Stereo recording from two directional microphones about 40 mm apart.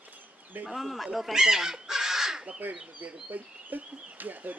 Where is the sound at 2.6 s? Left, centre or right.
Right.